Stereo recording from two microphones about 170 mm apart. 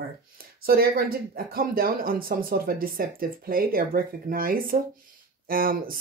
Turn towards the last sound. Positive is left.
turn(degrees=-60)  # may be behind; listen again after turning